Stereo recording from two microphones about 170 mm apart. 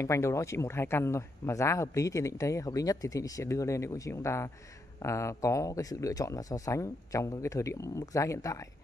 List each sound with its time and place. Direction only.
0.0 s speech: 15° left (ahead or behind)